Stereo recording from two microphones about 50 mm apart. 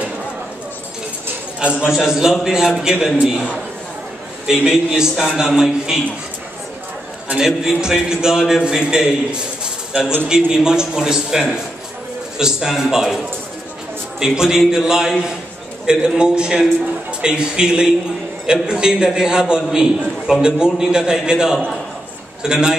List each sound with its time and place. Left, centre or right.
1.6 s a man's voice: right
2.0 s a man's voice: centre
7.3 s a man's voice: centre
14.2 s a man's voice: centre